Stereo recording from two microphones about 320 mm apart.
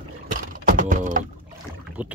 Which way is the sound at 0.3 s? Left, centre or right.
Right.